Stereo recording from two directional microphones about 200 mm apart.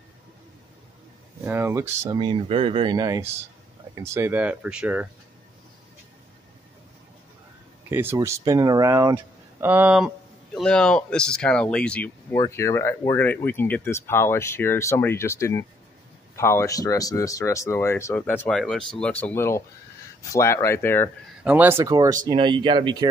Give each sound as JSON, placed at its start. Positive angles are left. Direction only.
{"t": 1.4, "sound": "speech", "side_deg": -10}
{"t": 7.9, "sound": "speech", "side_deg": -10}
{"t": 21.5, "sound": "speech", "side_deg": -10}